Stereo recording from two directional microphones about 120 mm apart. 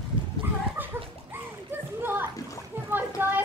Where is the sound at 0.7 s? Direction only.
15° right (ahead or behind).